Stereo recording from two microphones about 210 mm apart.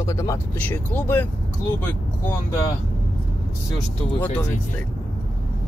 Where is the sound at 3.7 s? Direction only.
10° left (ahead or behind).